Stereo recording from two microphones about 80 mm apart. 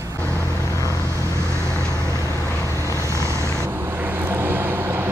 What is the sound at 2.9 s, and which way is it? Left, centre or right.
Vehicle, right.